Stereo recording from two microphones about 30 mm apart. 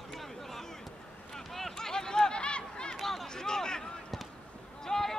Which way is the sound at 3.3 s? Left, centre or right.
Left.